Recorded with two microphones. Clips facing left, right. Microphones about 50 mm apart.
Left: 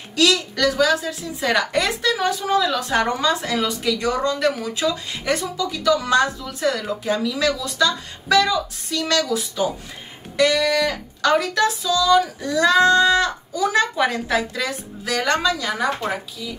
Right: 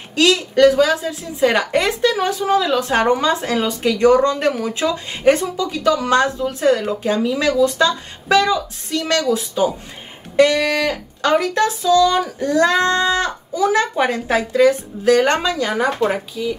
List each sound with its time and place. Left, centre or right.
0.1 s a woman's voice: right